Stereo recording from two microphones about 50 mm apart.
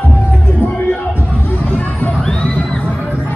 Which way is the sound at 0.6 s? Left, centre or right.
Left.